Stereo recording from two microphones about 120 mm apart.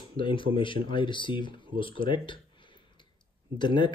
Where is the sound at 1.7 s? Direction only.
45° left (ahead or behind).